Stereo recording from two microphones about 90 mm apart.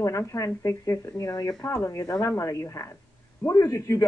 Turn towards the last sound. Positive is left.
turn(degrees=35)  # may be behind; listen again after turning